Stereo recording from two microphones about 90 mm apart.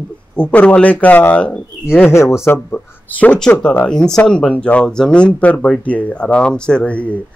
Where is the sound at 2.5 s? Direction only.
20° left (ahead or behind).